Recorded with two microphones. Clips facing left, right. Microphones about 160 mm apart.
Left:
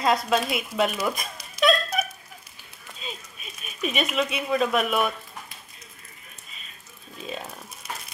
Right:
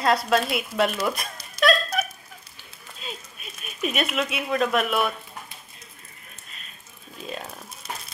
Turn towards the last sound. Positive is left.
turn(degrees=0)  # may be behind; listen again after turning